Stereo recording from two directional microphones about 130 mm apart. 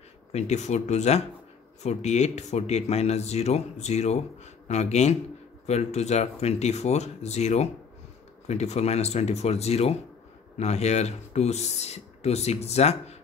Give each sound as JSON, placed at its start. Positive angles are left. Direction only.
{"t": 0.3, "sound": "speech", "side_deg": 60}